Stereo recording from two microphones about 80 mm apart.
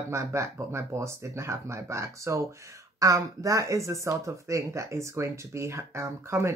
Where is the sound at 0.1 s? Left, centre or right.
Right.